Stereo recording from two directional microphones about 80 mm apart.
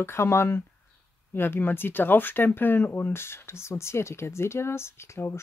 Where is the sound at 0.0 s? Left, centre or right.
Left.